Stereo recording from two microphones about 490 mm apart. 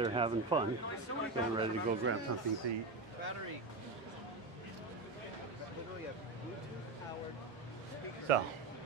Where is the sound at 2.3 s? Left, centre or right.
Right.